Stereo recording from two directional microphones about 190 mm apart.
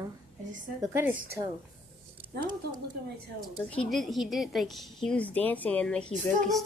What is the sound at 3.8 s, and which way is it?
A woman's voice, centre (ahead or behind).